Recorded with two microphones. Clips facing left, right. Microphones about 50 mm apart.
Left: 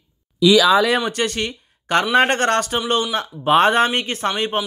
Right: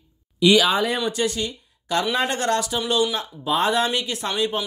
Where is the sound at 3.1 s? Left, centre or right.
Left.